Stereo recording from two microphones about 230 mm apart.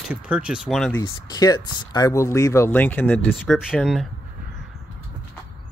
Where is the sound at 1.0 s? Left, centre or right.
Centre.